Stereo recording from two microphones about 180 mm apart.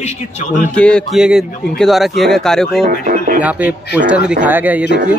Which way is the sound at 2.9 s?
50° right (ahead or behind).